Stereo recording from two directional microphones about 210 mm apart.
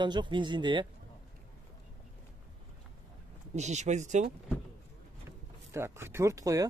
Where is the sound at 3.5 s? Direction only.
35° right (ahead or behind).